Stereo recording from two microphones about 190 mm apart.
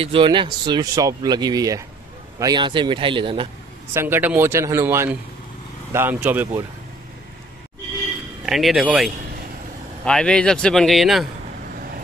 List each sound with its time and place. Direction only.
0.0 s speech: 25° right (ahead or behind)
3.9 s speech: 10° right (ahead or behind)
8.5 s speech: centre (ahead or behind)